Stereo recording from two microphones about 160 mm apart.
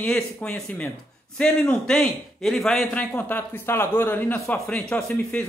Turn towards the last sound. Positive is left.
turn(degrees=10)  # may be behind; listen again after turning